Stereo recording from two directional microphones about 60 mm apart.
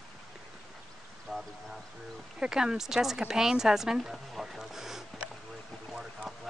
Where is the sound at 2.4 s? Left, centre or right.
Centre.